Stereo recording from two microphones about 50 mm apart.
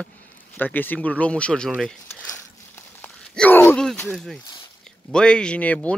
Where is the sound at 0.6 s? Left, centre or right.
Left; by 2.0 s centre.